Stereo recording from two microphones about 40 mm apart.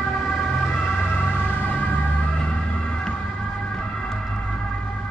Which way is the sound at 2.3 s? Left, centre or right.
Left.